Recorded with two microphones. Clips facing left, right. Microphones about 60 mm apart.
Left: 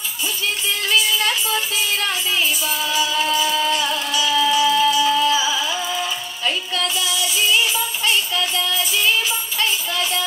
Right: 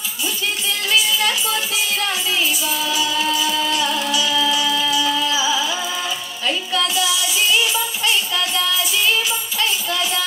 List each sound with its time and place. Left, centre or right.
2.9 s music: left